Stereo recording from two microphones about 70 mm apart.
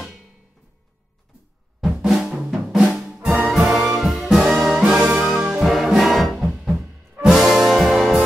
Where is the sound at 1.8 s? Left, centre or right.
Centre.